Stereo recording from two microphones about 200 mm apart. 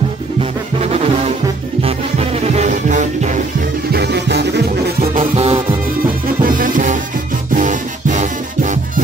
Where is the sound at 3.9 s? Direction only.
55° right (ahead or behind).